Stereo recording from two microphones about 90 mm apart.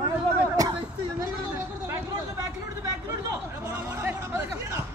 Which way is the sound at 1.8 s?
35° right (ahead or behind).